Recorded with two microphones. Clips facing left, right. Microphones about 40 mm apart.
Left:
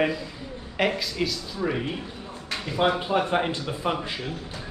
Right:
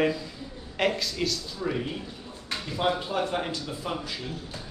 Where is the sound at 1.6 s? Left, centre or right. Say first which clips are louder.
Left 4 dB; left.